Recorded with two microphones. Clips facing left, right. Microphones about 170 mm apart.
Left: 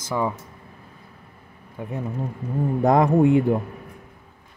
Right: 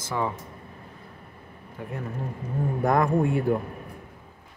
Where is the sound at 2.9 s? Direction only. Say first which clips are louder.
Left 6 dB; 20° left (ahead or behind).